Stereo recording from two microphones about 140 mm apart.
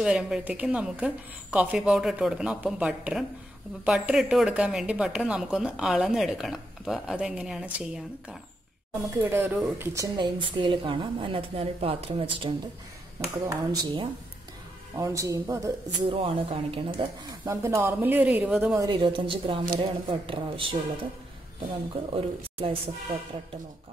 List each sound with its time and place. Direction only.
0.0 s a woman's voice: 5° right (ahead or behind)
9.2 s a woman's voice: 15° right (ahead or behind); by 12.5 s 40° right (ahead or behind)
13.2 s speech: 25° right (ahead or behind)
16.1 s a woman's voice: 40° right (ahead or behind)
17.5 s a woman's voice: 20° right (ahead or behind)
18.8 s a woman's voice: 35° right (ahead or behind)
22.1 s a woman's voice: 40° right (ahead or behind)